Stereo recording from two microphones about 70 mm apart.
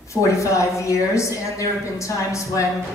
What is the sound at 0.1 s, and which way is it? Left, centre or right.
A woman's voice, left.